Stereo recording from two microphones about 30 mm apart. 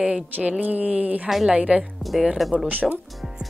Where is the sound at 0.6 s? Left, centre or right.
Right.